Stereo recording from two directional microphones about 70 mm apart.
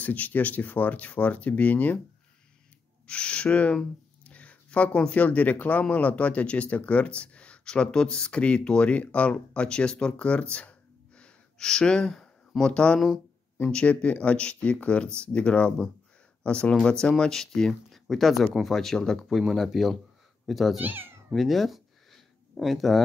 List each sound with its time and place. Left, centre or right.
0.0 s speech: left
3.1 s speech: centre
10.5 s a sound: centre
13.7 s speech: centre
20.8 s speech: right
21.3 s a sound: centre